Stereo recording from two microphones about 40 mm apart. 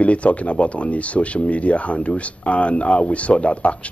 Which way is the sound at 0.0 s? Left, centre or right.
Left.